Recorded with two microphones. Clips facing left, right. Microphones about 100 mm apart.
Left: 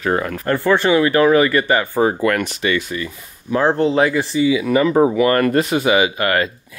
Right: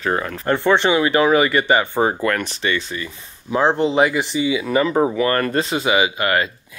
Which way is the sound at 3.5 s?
20° right (ahead or behind).